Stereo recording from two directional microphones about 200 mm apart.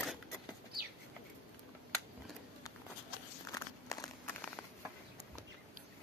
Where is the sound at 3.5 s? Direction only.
15° left (ahead or behind).